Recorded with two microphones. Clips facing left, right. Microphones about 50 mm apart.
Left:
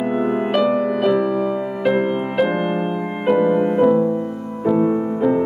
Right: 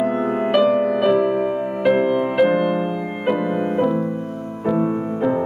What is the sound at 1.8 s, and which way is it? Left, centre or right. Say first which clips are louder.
Music: right 3 dB; centre.